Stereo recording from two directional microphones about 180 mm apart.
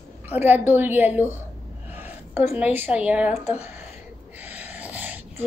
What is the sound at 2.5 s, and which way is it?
A woman's voice, 10° right (ahead or behind).